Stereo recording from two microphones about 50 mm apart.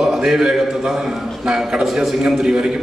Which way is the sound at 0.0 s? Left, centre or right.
Centre.